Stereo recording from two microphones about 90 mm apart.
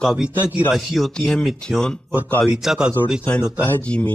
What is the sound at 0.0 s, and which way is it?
Speech, 10° right (ahead or behind).